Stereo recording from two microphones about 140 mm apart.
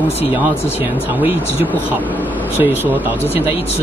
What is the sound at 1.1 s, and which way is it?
Speech, 15° right (ahead or behind).